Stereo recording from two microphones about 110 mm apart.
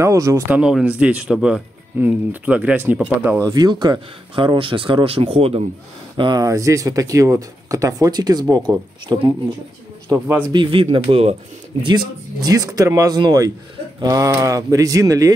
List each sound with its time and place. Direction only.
0.0 s a man's voice: 30° right (ahead or behind)
0.5 s speech: 10° right (ahead or behind)
3.3 s speech: 35° right (ahead or behind); by 5.7 s 65° right (ahead or behind)
6.1 s speech: 45° right (ahead or behind)
6.4 s speech: 30° right (ahead or behind)
10.0 s a man's voice: 25° right (ahead or behind)
10.5 s speech: 50° right (ahead or behind)
11.8 s speech: 40° right (ahead or behind)